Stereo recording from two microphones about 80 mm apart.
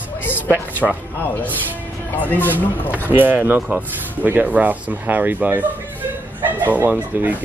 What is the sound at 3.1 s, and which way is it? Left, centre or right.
A man's voice, right.